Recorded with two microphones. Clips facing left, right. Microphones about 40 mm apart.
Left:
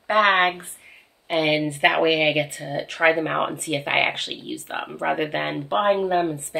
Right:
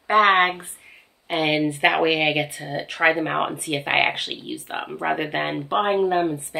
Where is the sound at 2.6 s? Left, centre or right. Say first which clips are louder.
Left 1 dB; centre.